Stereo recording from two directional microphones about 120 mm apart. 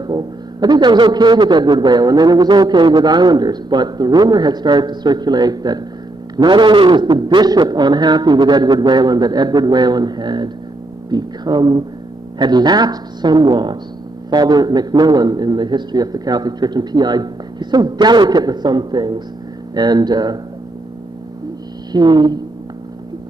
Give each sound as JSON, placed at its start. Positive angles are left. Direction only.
{"t": 0.0, "sound": "a man's voice", "side_deg": -35}
{"t": 21.9, "sound": "a man's voice", "side_deg": -35}